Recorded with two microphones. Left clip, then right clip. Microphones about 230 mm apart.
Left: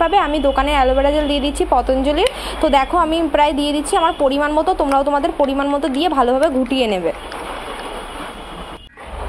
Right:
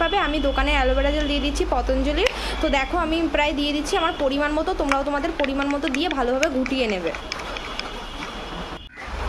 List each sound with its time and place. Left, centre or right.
0.0 s a woman's voice: centre